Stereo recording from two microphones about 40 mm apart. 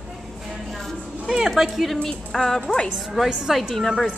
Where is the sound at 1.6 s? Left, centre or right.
Centre.